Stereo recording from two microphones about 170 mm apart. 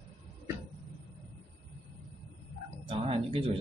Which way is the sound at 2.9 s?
35° right (ahead or behind).